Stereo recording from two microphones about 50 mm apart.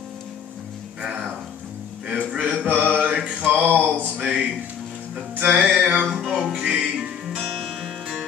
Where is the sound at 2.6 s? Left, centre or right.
Right.